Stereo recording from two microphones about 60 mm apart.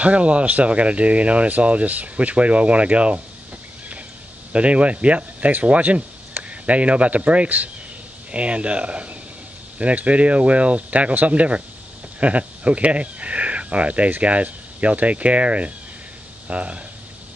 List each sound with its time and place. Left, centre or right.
0.0 s speech: right
4.5 s speech: right